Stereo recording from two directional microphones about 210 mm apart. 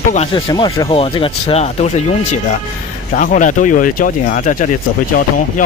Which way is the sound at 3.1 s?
40° left (ahead or behind).